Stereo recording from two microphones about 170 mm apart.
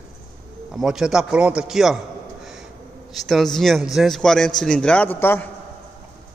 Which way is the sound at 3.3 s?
Centre (ahead or behind).